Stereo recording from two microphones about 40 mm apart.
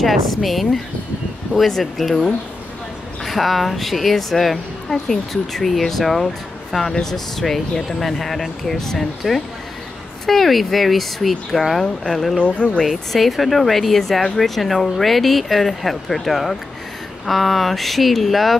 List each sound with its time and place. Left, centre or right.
0.0 s speech: centre
1.7 s speech: centre
3.3 s speech: centre
12.4 s speech: left
12.8 s speech: centre